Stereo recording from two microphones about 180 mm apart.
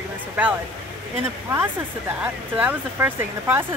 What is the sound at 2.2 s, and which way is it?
Speech, 10° right (ahead or behind).